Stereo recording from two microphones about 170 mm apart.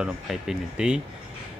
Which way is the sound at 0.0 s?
5° right (ahead or behind).